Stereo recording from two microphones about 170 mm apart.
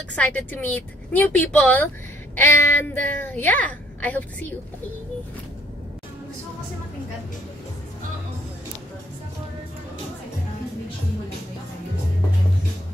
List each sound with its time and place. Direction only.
0.1 s a child's voice: 10° left (ahead or behind)